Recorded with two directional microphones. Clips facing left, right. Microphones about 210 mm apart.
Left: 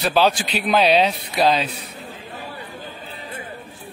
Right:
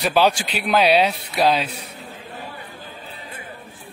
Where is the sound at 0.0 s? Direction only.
10° right (ahead or behind).